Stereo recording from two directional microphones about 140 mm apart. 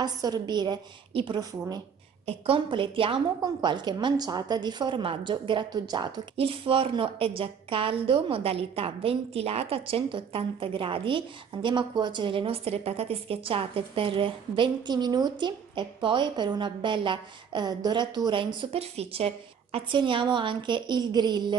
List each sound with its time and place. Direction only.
0.0 s a woman's voice: 30° right (ahead or behind)
2.2 s a woman's voice: 40° right (ahead or behind)